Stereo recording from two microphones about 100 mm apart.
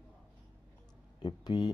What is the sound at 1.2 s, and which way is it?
Speech, 45° left (ahead or behind).